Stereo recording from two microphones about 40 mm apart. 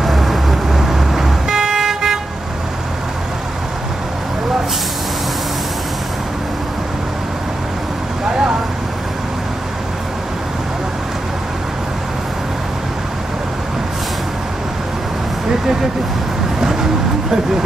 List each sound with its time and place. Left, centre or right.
0.0 s vehicle: centre
8.3 s vehicle: centre